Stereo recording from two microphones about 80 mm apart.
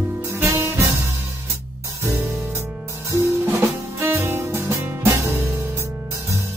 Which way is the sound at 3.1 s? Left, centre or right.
Right.